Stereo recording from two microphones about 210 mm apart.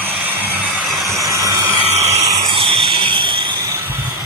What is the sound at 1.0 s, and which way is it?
Vehicle, 15° right (ahead or behind).